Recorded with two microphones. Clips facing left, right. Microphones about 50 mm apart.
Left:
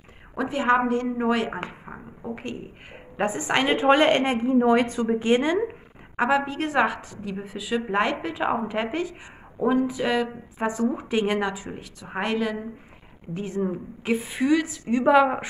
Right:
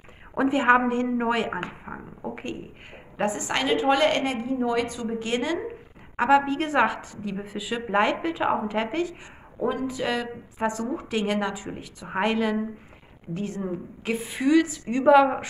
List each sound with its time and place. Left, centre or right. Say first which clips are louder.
0.3 s a woman's voice: right 2 dB; centre
3.2 s a woman's voice: left 2 dB; centre; by 5.1 s left
5.2 s a woman's voice: left 5 dB; left
6.1 s a woman's voice: right 2 dB; centre
11.5 s a woman's voice: even; centre
13.3 s a woman's voice: left 3 dB; centre